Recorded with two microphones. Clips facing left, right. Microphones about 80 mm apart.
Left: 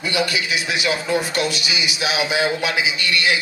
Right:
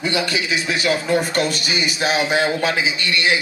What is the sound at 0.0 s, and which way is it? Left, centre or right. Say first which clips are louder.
Speech: even; right.